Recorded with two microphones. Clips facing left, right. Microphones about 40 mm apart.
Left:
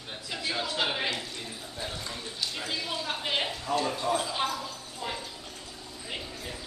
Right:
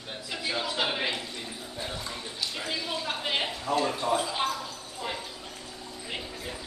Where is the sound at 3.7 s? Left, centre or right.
Centre.